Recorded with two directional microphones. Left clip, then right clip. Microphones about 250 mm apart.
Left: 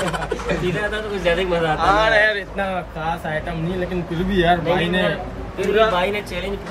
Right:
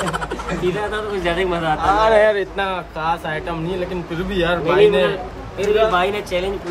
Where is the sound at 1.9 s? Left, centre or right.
Right.